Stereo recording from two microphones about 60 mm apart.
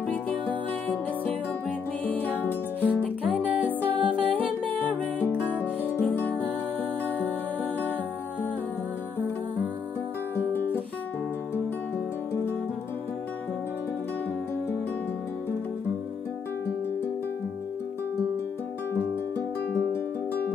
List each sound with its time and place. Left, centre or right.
0.1 s music: left